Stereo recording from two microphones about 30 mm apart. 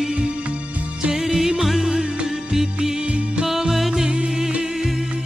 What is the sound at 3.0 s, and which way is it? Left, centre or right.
Music, right.